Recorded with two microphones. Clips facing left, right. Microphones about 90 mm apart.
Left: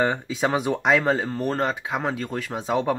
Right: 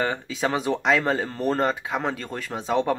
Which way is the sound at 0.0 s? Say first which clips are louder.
Left 2 dB; 20° left (ahead or behind).